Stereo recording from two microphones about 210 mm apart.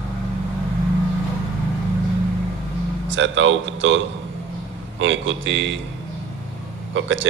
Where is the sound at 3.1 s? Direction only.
65° right (ahead or behind).